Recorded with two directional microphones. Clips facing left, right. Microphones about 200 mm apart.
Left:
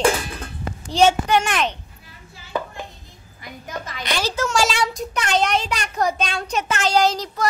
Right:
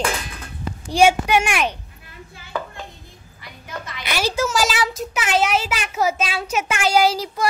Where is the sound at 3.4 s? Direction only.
45° left (ahead or behind).